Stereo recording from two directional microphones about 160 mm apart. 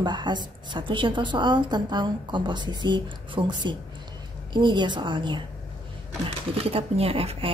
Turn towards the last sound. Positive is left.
turn(degrees=-35)  # may be behind; listen again after turning